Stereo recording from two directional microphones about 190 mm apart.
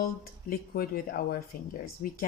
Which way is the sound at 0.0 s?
50° left (ahead or behind).